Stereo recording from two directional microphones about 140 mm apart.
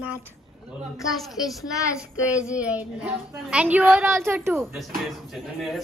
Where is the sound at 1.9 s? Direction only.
10° right (ahead or behind).